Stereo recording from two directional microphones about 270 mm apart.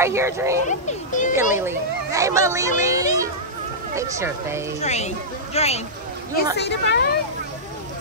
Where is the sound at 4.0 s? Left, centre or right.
Centre.